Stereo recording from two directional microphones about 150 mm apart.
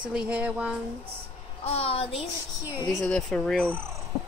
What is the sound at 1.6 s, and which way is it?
Speech, 40° left (ahead or behind).